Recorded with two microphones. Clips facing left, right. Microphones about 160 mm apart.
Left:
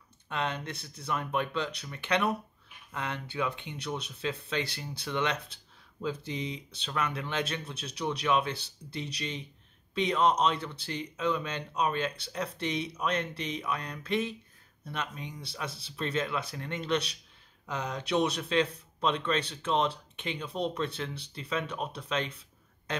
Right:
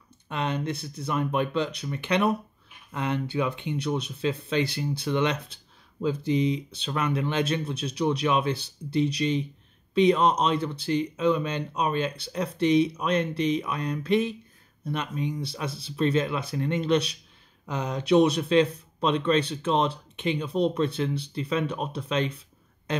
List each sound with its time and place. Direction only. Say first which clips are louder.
0.3 s speech: right 5 dB; 15° right (ahead or behind)